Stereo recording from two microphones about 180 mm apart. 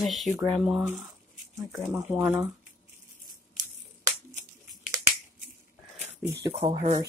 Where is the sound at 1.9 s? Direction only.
15° right (ahead or behind).